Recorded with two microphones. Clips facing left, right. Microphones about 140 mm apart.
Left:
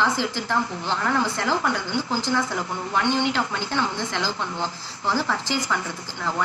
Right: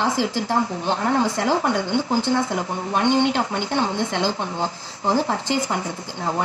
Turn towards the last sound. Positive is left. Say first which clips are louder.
# right 3 dB
turn(degrees=-25)  # may be behind; listen again after turning